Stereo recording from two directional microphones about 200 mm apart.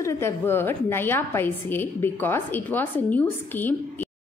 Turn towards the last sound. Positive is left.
turn(degrees=10)  # may be behind; listen again after turning